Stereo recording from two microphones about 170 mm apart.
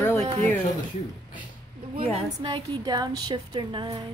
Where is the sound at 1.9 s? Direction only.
30° right (ahead or behind).